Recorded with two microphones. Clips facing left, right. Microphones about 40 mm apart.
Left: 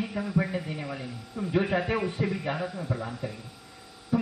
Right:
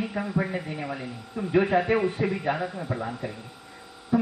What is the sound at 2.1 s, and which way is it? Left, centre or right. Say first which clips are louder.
Speech: right 3 dB; right.